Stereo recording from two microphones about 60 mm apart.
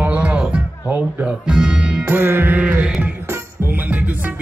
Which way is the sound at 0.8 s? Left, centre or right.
Right.